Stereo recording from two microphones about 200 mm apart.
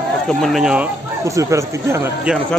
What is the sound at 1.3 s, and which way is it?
Speech, 15° right (ahead or behind).